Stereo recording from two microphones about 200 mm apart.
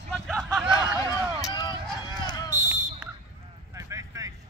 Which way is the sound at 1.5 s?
25° left (ahead or behind).